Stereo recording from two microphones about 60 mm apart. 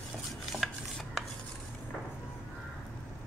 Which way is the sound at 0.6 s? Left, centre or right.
Centre.